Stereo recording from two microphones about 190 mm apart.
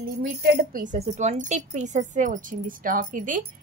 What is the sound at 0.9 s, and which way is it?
A woman's voice, 35° right (ahead or behind).